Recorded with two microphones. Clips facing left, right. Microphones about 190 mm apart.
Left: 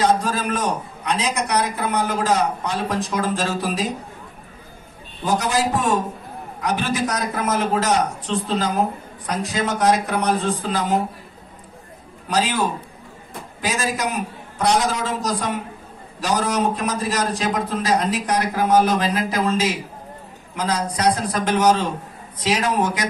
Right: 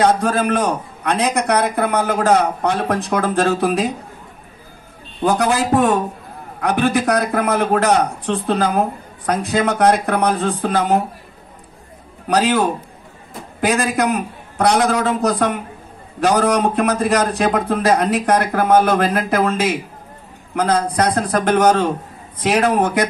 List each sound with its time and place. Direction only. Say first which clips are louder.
0.0 s a man's voice: right 4 dB; 60° right (ahead or behind)
5.2 s a man's voice: right 4 dB; 60° right (ahead or behind)
12.3 s a man's voice: right 5 dB; 65° right (ahead or behind)